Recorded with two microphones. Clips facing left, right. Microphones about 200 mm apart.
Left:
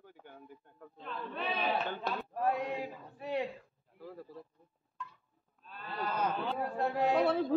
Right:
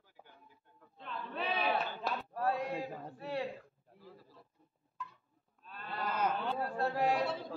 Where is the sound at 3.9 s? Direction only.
60° left (ahead or behind).